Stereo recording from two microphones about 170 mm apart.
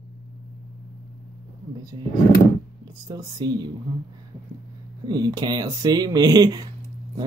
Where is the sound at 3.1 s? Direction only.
25° right (ahead or behind).